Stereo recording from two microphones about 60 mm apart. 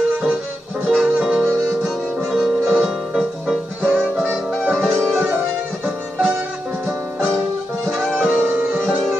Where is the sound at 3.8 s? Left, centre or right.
Right.